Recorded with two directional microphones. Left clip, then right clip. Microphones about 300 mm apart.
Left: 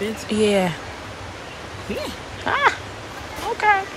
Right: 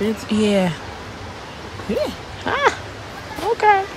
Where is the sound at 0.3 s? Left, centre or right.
Centre.